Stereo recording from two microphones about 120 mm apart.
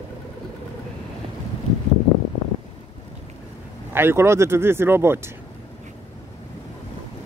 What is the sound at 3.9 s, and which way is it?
Speech, 20° right (ahead or behind).